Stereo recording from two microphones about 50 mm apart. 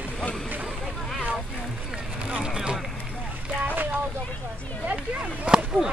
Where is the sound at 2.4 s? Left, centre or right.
Centre.